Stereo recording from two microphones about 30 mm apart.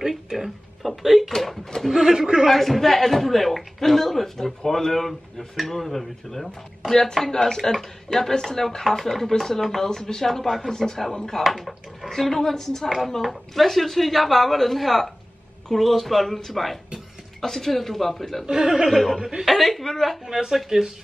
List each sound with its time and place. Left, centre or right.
0.3 s speech: centre
0.8 s a sound: centre
1.4 s a man's voice: centre
1.9 s speech: centre
2.1 s a man's voice: right
2.5 s a man's voice: centre
10.4 s a man's voice: centre
10.8 s speech: centre
11.4 s speech: centre
12.2 s speech: centre
13.2 s a man's voice: centre
18.6 s a man's voice: right
18.9 s a man's voice: centre
20.2 s speech: centre